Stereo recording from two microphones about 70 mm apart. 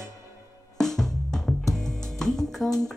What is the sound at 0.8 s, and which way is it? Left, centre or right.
Music, centre.